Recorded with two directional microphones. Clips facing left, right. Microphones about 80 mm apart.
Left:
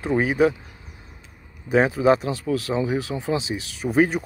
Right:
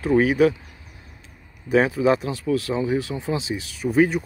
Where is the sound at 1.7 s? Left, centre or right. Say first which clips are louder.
Left 1 dB; left.